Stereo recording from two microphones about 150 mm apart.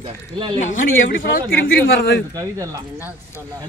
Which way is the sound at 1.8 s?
90° left.